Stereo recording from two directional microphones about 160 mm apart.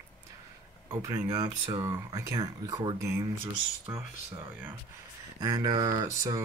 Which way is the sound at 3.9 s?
10° right (ahead or behind).